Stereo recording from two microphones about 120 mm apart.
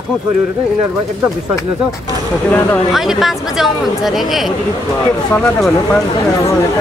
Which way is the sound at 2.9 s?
Centre (ahead or behind).